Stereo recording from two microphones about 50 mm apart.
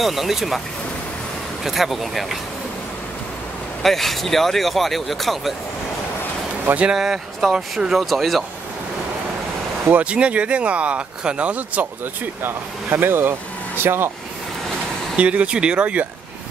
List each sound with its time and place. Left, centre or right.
0.0 s speech: centre
1.6 s speech: centre
3.8 s speech: centre
7.0 s speech: centre
9.9 s speech: right
12.4 s speech: right
15.1 s speech: right